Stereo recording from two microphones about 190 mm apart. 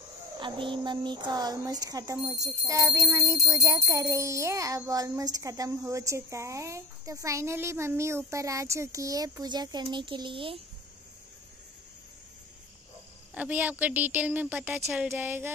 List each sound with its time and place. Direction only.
0.4 s speech: 25° right (ahead or behind)
13.3 s speech: 5° right (ahead or behind)